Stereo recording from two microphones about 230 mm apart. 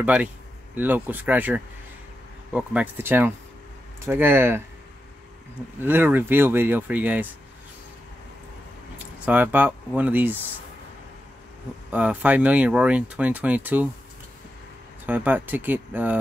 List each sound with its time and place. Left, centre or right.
0.0 s speech: centre
5.8 s speech: centre
8.9 s speech: centre
11.9 s speech: centre
15.0 s speech: centre